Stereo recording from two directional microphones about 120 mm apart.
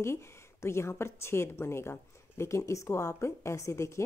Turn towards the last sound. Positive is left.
turn(degrees=25)  # may be behind; listen again after turning